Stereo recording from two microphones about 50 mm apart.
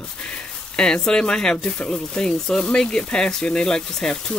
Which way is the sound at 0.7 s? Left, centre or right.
Centre.